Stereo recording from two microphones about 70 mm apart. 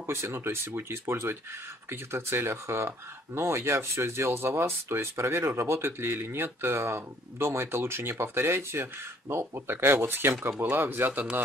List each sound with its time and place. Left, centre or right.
0.0 s speech: right